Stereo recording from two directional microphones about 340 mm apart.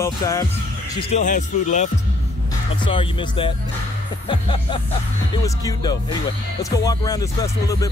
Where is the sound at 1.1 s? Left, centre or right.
Left.